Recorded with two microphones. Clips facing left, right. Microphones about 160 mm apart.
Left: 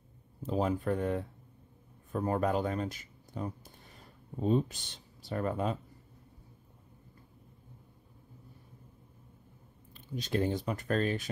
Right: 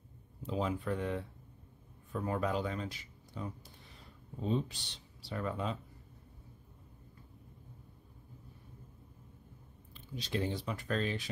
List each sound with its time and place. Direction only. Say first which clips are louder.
0.4 s speech: left 4 dB; 45° left (ahead or behind)
9.9 s speech: left 5 dB; 50° left (ahead or behind)